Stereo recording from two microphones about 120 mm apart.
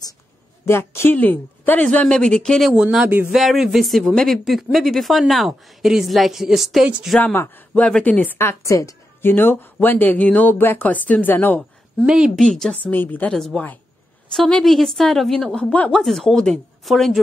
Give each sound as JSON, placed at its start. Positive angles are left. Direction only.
{"t": 0.7, "sound": "a woman's voice", "side_deg": 20}
{"t": 2.7, "sound": "a woman's voice", "side_deg": -5}
{"t": 7.2, "sound": "a woman's voice", "side_deg": 15}
{"t": 12.1, "sound": "speech", "side_deg": -5}
{"t": 12.4, "sound": "a woman's voice", "side_deg": 5}
{"t": 13.3, "sound": "a woman's voice", "side_deg": 0}